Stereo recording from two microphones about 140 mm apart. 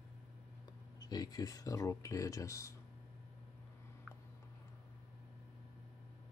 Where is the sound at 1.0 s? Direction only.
30° left (ahead or behind).